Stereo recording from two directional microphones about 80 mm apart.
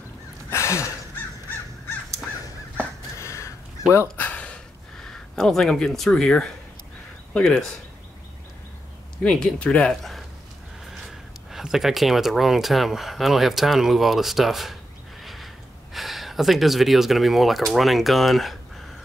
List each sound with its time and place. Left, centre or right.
0.5 s a sound: left
3.2 s crow: left
4.2 s a sound: centre
5.0 s speech: centre
9.2 s speech: centre
11.1 s speech: centre